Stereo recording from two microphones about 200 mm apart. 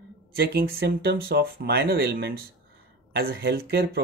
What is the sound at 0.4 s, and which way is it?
Speech, 50° right (ahead or behind).